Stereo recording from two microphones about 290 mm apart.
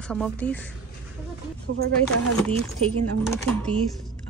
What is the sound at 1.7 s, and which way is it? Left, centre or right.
Speech, right.